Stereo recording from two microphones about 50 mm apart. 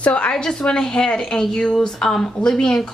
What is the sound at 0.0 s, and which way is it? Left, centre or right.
Speech, left.